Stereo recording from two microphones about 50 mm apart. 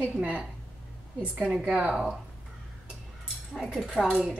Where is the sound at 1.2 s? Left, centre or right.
Right.